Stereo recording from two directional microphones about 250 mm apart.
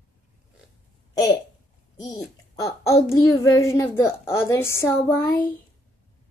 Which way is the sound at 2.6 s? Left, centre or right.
Centre.